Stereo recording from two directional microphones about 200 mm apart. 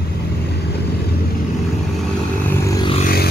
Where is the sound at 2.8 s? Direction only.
25° left (ahead or behind).